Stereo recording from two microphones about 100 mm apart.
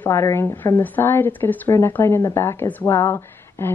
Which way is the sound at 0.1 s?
25° left (ahead or behind).